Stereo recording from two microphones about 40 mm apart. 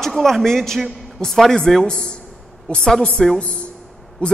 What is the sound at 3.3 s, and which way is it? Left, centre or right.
A woman's voice, left.